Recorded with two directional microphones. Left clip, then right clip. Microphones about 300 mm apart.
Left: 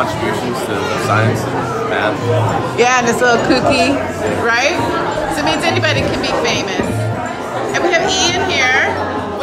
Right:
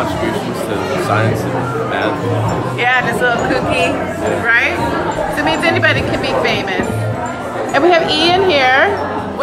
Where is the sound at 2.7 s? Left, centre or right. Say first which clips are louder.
Left 1 dB; centre.